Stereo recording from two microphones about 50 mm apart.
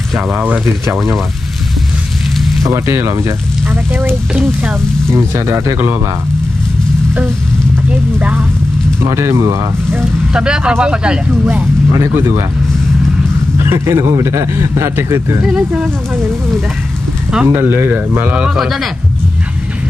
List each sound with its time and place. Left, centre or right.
0.3 s speech: right
2.7 s speech: right
3.6 s speech: right
5.1 s speech: right
7.9 s speech: right
9.0 s a man's voice: right
10.3 s speech: centre
12.0 s speech: right
13.6 s a man's voice: right
17.5 s speech: right
18.2 s speech: right